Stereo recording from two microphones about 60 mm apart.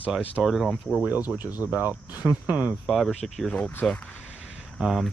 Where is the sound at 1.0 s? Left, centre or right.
Right.